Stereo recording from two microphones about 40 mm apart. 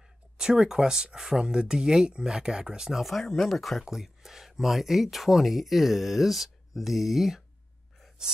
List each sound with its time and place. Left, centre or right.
0.4 s speech: centre
2.9 s speech: centre
8.2 s a sound: centre